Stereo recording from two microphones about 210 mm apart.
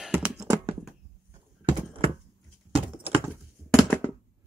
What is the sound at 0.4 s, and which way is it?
Computer keyboard, 15° right (ahead or behind).